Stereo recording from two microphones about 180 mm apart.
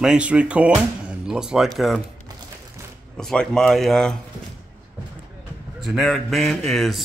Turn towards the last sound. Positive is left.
turn(degrees=0)  # may be behind; listen again after turning